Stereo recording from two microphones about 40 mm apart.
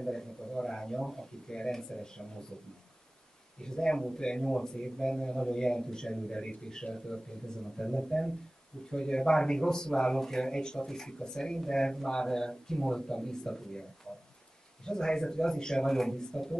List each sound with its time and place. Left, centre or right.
0.0 s speech: centre
3.6 s speech: centre
14.9 s speech: centre